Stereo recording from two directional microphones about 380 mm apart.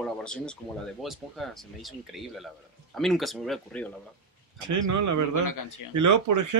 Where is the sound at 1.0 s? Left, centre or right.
Centre.